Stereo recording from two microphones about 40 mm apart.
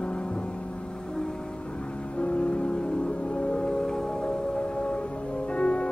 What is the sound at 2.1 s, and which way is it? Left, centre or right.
Music, left.